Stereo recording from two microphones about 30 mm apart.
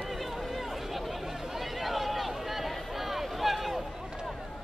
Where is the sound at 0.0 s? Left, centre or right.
Centre.